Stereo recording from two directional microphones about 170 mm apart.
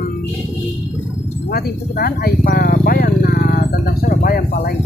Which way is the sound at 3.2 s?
60° left (ahead or behind).